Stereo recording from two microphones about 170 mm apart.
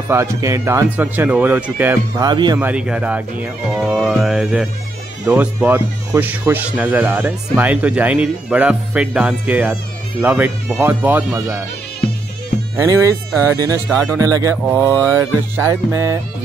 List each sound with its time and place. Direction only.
0.1 s speech: 15° right (ahead or behind)
2.2 s speech: 25° right (ahead or behind)
2.6 s speech: 5° right (ahead or behind)
3.8 s music: centre (ahead or behind)
5.2 s speech: 5° right (ahead or behind)
12.7 s speech: 20° right (ahead or behind)
13.8 s speech: 5° left (ahead or behind)
14.1 s speech: 20° right (ahead or behind)